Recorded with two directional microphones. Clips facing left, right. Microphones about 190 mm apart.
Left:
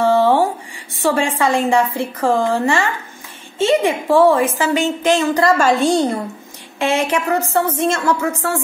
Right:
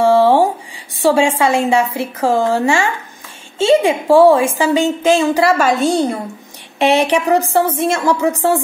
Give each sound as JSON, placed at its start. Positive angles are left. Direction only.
{"t": 0.0, "sound": "a sound", "side_deg": -10}
{"t": 1.0, "sound": "a woman's voice", "side_deg": -10}
{"t": 7.1, "sound": "a woman's voice", "side_deg": -15}